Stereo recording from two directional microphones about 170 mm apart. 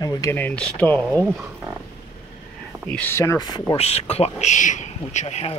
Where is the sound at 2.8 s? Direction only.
10° left (ahead or behind); by 3.7 s 25° left (ahead or behind).